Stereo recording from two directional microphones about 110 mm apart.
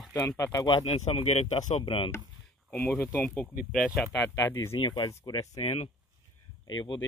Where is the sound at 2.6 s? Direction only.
15° left (ahead or behind).